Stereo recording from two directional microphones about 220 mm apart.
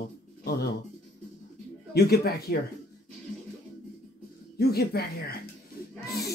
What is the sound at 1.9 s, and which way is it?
Speech, 45° left (ahead or behind).